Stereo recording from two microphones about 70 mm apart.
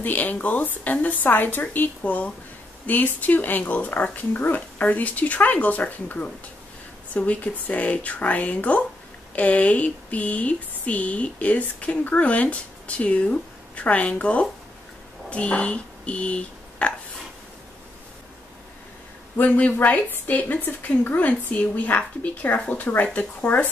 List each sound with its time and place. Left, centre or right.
0.0 s speech: left
19.3 s speech: left